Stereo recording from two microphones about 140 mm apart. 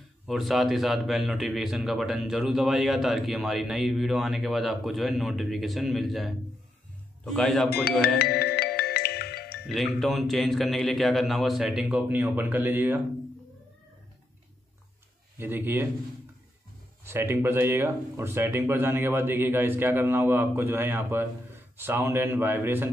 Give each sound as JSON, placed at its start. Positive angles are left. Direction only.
{"t": 0.3, "sound": "speech", "side_deg": 0}
{"t": 8.8, "sound": "music", "side_deg": 90}
{"t": 9.7, "sound": "speech", "side_deg": 0}
{"t": 15.3, "sound": "speech", "side_deg": -15}
{"t": 17.0, "sound": "speech", "side_deg": -15}